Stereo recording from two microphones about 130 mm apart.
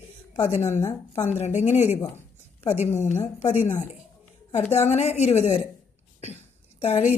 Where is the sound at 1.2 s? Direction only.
60° left (ahead or behind).